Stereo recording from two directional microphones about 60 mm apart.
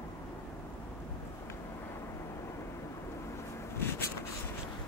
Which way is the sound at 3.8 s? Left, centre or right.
Left.